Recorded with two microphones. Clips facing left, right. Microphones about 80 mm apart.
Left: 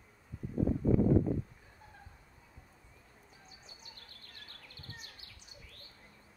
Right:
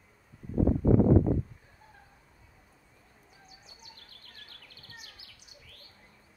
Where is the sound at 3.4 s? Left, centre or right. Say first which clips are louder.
Right 3 dB; left.